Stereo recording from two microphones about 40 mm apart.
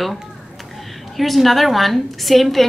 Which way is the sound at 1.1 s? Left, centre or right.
Centre.